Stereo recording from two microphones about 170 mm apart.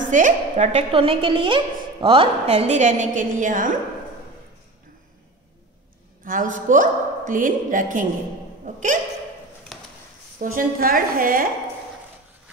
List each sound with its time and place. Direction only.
0.0 s a woman's voice: 50° right (ahead or behind)
6.2 s a woman's voice: 50° right (ahead or behind)
9.7 s a sound: centre (ahead or behind)
10.4 s a woman's voice: 55° right (ahead or behind)